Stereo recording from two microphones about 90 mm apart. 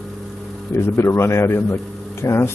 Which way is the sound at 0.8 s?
30° left (ahead or behind).